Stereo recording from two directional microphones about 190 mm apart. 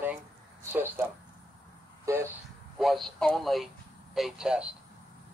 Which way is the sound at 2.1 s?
15° right (ahead or behind).